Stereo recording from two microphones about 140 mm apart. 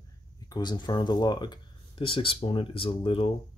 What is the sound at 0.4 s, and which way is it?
Speech, 30° left (ahead or behind).